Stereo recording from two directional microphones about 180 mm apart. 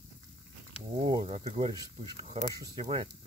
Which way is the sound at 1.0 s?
30° right (ahead or behind).